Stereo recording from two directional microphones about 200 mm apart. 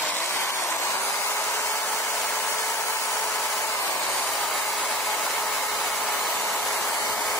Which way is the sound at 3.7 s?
15° left (ahead or behind).